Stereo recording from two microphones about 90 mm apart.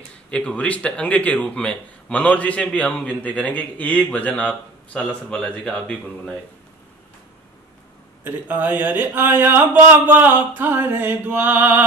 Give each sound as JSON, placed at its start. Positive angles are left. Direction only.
{"t": 0.3, "sound": "a man's voice", "side_deg": 10}
{"t": 8.2, "sound": "speech", "side_deg": -20}